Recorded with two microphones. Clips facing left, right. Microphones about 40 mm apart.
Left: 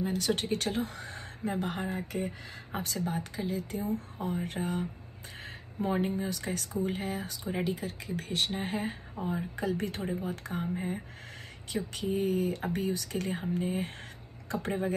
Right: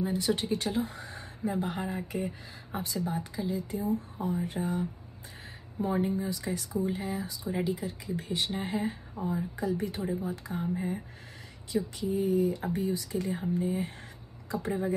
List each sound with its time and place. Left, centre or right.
0.3 s speech: left
9.2 s speech: left
9.6 s speech: left
11.7 s speech: left